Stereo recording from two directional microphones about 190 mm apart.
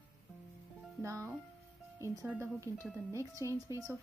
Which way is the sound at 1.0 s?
15° right (ahead or behind).